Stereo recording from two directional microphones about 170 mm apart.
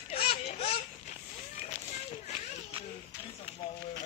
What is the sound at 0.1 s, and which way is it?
Baby laughter, 35° left (ahead or behind).